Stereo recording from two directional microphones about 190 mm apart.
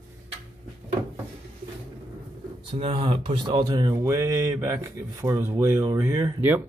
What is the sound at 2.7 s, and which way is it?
Speech, 30° right (ahead or behind).